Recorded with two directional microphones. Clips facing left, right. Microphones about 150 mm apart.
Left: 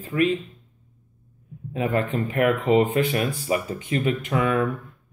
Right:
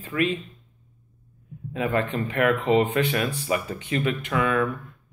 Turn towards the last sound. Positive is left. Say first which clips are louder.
# left 1 dB
turn(degrees=30)  # may be behind; listen again after turning